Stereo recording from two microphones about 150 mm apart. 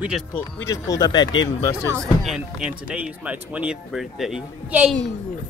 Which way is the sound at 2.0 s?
Centre (ahead or behind).